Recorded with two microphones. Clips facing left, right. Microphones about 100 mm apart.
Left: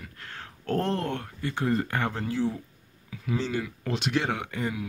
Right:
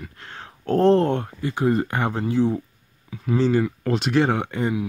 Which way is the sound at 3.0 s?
40° right (ahead or behind).